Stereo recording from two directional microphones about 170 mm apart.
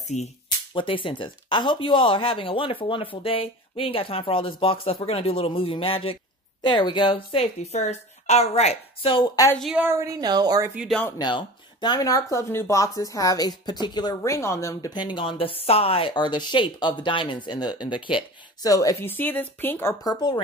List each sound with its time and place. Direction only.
0.1 s speech: 45° left (ahead or behind)
0.7 s speech: 30° left (ahead or behind)
9.6 s a woman's voice: 5° right (ahead or behind)
9.8 s speech: 20° right (ahead or behind)
10.8 s a woman's voice: 5° left (ahead or behind)
11.1 s speech: 25° left (ahead or behind)